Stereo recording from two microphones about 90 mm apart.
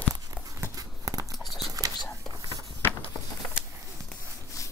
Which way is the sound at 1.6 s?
40° right (ahead or behind).